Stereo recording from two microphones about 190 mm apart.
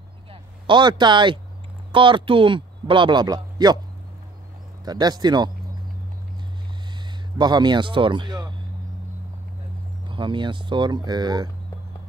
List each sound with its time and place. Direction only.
0.3 s speech: 25° right (ahead or behind)
4.8 s speech: 20° right (ahead or behind)
7.3 s speech: 25° right (ahead or behind)
10.0 s speech: 25° right (ahead or behind)